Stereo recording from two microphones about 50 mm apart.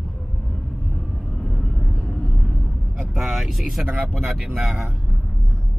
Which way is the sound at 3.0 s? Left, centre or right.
Centre.